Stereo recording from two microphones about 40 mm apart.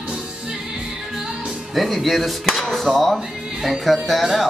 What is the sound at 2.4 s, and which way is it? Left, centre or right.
Chop, centre.